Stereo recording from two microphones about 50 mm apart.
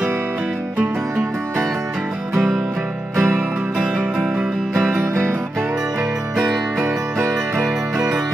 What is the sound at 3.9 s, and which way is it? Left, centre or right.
Music, centre.